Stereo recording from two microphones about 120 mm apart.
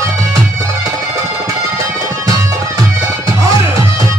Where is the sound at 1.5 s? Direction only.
25° right (ahead or behind).